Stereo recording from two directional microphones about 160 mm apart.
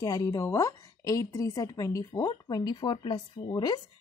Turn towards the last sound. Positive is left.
turn(degrees=25)  # may be behind; listen again after turning